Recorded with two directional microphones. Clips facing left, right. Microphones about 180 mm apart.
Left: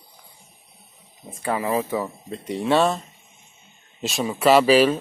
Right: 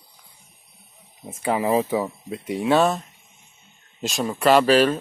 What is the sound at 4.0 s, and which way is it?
Speech, centre (ahead or behind).